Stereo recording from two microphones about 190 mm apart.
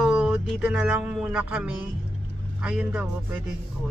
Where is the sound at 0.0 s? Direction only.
5° right (ahead or behind).